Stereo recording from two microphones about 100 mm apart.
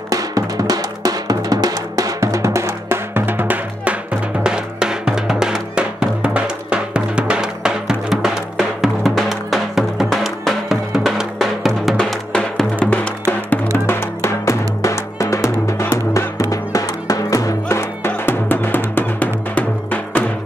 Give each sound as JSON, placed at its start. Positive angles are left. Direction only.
{"t": 0.1, "sound": "drum", "side_deg": -35}
{"t": 4.4, "sound": "music", "side_deg": -5}
{"t": 12.3, "sound": "music", "side_deg": 10}
{"t": 13.8, "sound": "music", "side_deg": 25}